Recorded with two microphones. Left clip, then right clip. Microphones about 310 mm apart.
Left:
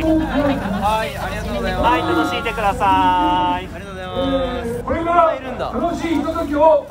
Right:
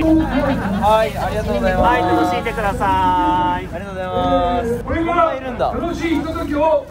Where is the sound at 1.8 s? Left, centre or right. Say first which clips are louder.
Left 1 dB; centre.